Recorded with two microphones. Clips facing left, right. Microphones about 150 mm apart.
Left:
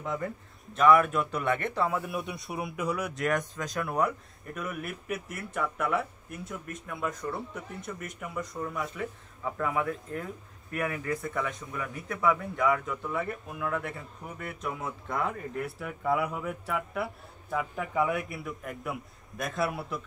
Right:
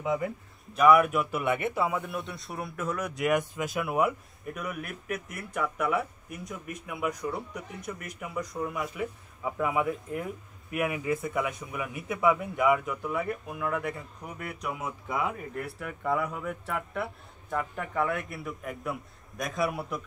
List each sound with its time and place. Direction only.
0.0 s speech: 5° right (ahead or behind)
2.0 s speech: centre (ahead or behind)
3.5 s speech: 5° right (ahead or behind)
11.2 s speech: centre (ahead or behind)
11.7 s speech: 15° right (ahead or behind)
12.6 s speech: centre (ahead or behind)